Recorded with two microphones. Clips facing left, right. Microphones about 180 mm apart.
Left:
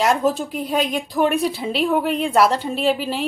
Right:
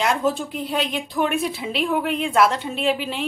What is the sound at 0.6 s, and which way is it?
Speech, 45° left (ahead or behind).